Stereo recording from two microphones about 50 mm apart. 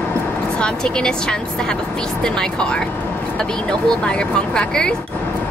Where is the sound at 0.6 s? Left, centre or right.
Centre.